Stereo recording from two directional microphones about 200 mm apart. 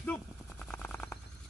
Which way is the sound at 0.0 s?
5° left (ahead or behind).